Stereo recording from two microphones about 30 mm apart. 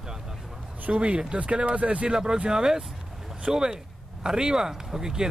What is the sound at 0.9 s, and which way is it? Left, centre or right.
Speech, right.